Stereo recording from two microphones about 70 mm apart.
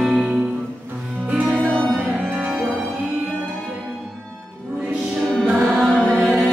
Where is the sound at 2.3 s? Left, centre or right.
Centre.